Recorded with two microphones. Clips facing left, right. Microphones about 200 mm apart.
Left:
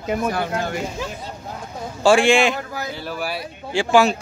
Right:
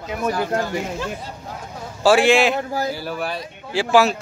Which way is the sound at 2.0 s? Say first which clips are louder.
Even; 5° right (ahead or behind).